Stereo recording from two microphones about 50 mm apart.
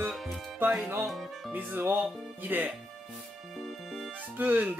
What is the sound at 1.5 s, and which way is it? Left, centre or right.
Speech, right.